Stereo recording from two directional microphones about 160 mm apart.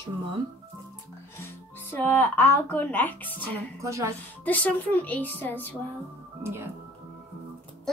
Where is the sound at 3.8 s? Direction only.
20° right (ahead or behind).